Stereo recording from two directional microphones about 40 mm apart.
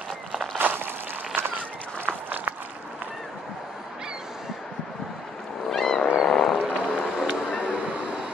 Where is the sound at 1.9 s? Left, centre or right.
Right.